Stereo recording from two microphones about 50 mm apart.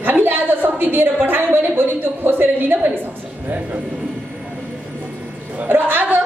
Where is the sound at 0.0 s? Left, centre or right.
Right.